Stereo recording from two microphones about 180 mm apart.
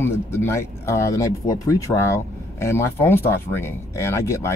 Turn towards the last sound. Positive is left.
turn(degrees=15)  # may be behind; listen again after turning